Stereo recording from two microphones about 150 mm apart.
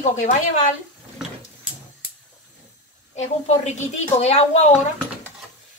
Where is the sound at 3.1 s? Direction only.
50° left (ahead or behind).